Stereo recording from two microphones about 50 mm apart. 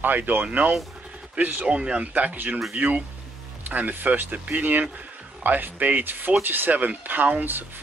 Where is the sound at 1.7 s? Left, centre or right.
Right.